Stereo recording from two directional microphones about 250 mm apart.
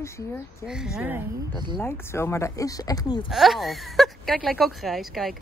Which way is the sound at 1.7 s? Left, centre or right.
Centre.